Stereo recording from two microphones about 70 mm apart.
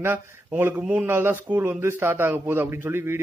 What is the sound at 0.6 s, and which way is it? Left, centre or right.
A man's voice, right.